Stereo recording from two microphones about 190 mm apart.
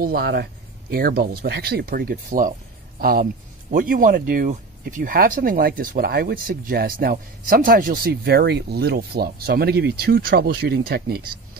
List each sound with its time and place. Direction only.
0.0 s speech: 55° right (ahead or behind)